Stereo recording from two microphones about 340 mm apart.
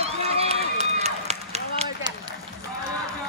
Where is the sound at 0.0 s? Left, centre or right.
Centre.